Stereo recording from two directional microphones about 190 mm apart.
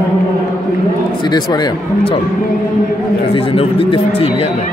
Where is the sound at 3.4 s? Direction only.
30° left (ahead or behind).